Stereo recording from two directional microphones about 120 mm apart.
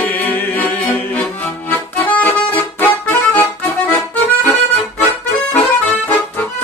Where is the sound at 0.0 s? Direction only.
15° left (ahead or behind).